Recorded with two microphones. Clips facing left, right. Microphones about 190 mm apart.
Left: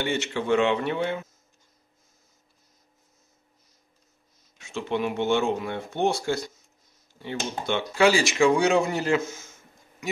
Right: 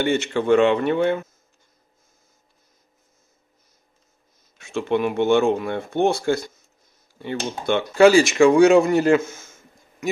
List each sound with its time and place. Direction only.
0.0 s speech: 50° right (ahead or behind)
4.6 s speech: 55° right (ahead or behind)